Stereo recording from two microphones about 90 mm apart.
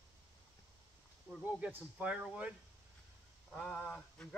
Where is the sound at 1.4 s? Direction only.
15° right (ahead or behind).